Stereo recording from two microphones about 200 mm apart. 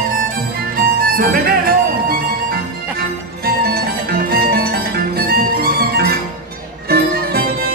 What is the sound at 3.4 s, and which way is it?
Music, 50° right (ahead or behind).